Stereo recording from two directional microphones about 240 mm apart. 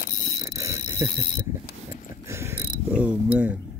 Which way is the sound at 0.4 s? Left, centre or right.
Centre.